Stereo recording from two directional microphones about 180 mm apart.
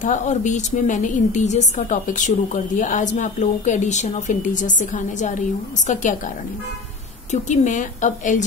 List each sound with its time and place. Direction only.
0.0 s a woman's voice: 45° left (ahead or behind)
7.2 s a woman's voice: 40° left (ahead or behind)